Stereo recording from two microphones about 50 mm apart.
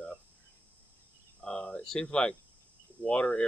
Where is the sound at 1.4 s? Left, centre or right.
Centre.